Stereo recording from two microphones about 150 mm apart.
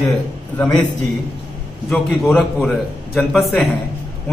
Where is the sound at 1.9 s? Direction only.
Centre (ahead or behind).